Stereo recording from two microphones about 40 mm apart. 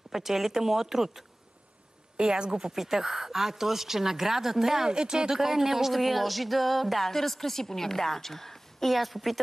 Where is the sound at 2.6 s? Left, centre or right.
Centre.